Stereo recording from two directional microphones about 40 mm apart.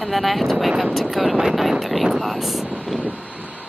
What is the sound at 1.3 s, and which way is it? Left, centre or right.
Speech, centre.